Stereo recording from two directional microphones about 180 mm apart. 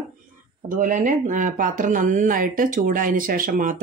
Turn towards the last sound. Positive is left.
turn(degrees=-50)  # may be behind; listen again after turning